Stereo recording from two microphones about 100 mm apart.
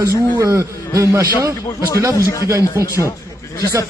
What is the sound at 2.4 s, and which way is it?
Speech, 30° right (ahead or behind).